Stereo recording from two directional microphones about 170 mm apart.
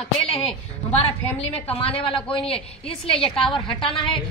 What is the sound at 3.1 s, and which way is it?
Speech, 30° left (ahead or behind).